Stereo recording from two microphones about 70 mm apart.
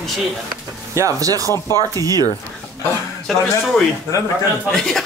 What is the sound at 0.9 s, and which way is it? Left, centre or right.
Speech, right.